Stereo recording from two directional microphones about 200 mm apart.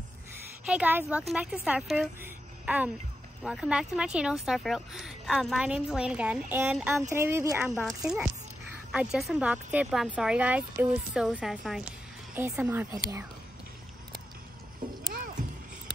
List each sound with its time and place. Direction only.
0.7 s a woman's voice: 5° right (ahead or behind)